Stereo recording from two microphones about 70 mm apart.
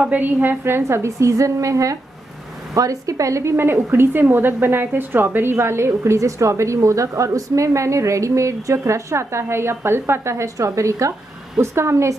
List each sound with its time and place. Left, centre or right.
0.0 s a woman's voice: right